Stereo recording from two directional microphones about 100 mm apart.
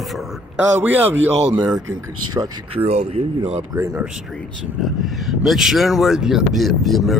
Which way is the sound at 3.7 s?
25° right (ahead or behind).